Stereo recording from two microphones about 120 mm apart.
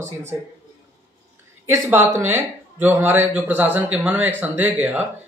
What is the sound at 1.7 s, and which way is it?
Speech, 20° right (ahead or behind).